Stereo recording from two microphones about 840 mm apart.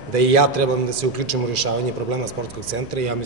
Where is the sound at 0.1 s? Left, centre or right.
Right.